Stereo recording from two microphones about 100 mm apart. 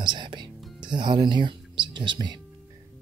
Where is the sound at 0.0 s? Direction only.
50° right (ahead or behind).